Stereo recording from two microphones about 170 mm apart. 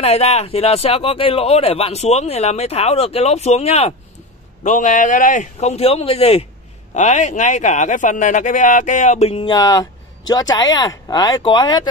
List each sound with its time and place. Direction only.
0.0 s a man's voice: 40° left (ahead or behind)
4.6 s a man's voice: 50° left (ahead or behind); by 11.9 s 25° left (ahead or behind)